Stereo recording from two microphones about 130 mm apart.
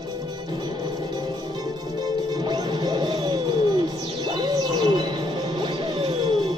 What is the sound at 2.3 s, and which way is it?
Music, 30° right (ahead or behind).